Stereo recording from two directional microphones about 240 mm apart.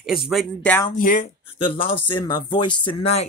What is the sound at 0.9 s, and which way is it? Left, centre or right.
Speech, left.